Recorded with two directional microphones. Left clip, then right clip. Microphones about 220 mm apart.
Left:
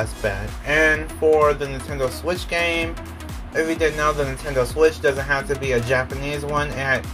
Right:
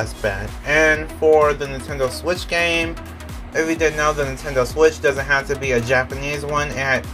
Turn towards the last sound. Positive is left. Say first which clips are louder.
# right 2 dB
turn(degrees=-10)  # may be behind; listen again after turning